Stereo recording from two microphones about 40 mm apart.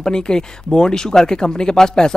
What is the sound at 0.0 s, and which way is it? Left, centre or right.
Speech, centre.